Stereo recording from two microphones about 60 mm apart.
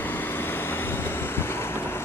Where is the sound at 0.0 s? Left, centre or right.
Left.